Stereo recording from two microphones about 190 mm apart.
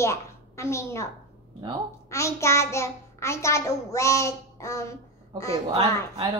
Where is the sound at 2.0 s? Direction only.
15° left (ahead or behind).